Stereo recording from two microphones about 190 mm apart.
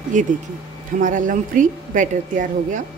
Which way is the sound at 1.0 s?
45° right (ahead or behind).